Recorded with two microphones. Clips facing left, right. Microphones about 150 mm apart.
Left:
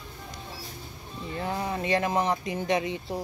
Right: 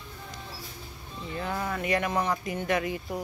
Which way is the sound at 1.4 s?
25° left (ahead or behind).